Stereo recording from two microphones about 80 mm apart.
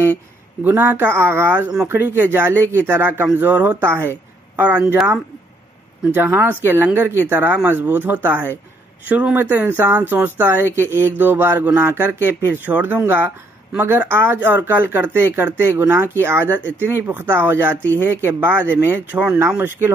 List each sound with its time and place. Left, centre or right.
0.7 s speech: right
2.6 s speech: left
2.9 s speech: right
6.1 s speech: right
17.7 s speech: left
18.2 s speech: right
19.1 s speech: centre